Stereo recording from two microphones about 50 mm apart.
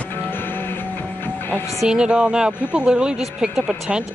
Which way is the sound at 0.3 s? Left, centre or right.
Left.